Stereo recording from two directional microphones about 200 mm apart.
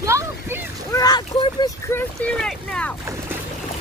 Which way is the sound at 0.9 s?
20° left (ahead or behind).